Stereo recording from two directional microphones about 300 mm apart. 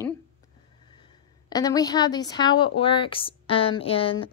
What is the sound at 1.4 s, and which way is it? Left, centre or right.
A woman's voice, centre.